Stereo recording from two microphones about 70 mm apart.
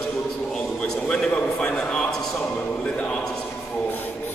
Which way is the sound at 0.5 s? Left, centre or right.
Centre.